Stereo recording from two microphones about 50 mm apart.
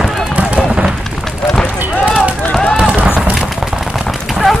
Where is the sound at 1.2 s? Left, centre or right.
Centre.